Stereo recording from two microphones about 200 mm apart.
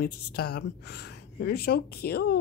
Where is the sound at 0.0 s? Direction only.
50° left (ahead or behind).